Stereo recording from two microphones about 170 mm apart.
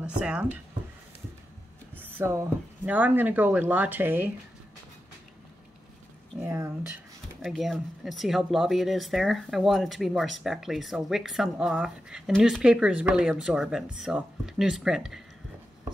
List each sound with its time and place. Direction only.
0.0 s speech: 5° right (ahead or behind)
2.0 s speech: 15° right (ahead or behind)
6.4 s speech: 15° right (ahead or behind)
7.4 s speech: centre (ahead or behind)